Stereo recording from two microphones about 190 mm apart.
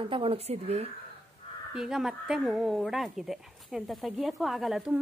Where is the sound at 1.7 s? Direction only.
5° right (ahead or behind).